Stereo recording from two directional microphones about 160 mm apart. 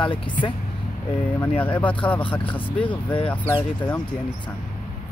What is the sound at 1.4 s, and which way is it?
Speech, 10° left (ahead or behind).